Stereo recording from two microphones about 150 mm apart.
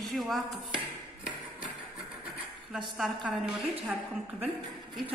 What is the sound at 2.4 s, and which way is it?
A woman's voice, 5° right (ahead or behind).